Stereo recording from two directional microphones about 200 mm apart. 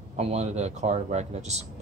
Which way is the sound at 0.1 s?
35° right (ahead or behind).